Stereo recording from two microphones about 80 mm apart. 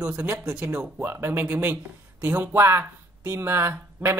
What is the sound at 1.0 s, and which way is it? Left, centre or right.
Speech, right.